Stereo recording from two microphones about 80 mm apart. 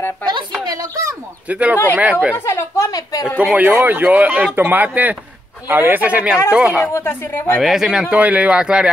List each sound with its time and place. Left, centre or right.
0.2 s speech: centre
0.7 s speech: right
1.5 s speech: centre
2.3 s a sound: left
2.9 s a sound: left
3.3 s speech: right
6.9 s speech: left
7.6 s speech: centre
8.2 s speech: centre